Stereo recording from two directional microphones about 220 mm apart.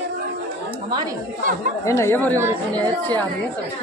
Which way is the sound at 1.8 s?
10° left (ahead or behind).